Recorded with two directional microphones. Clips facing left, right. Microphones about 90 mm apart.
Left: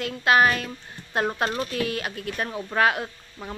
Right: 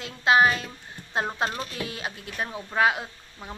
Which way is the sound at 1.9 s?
20° right (ahead or behind).